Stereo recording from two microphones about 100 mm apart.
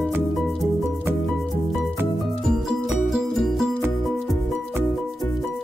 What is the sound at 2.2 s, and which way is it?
Music, centre (ahead or behind).